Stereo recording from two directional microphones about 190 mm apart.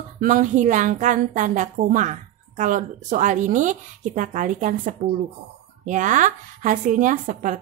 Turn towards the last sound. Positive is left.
turn(degrees=-40)  # may be behind; listen again after turning